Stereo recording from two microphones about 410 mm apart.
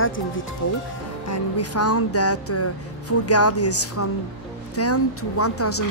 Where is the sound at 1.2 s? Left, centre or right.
Left.